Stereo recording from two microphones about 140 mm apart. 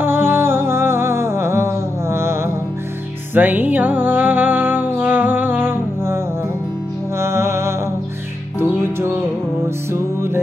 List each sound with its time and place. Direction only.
0.0 s music: 15° right (ahead or behind)